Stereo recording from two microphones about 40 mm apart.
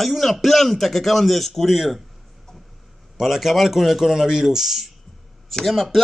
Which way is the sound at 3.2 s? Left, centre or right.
Centre.